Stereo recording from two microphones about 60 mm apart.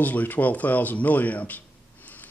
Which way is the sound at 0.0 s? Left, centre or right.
Left.